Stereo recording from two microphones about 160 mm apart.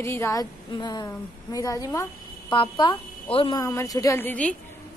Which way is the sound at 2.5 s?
30° left (ahead or behind).